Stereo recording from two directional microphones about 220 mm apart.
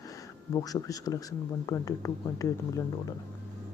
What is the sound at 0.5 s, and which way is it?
Speech, 15° left (ahead or behind).